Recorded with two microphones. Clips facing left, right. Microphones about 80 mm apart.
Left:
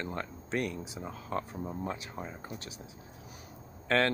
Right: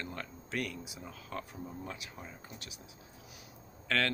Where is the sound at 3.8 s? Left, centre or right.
Left.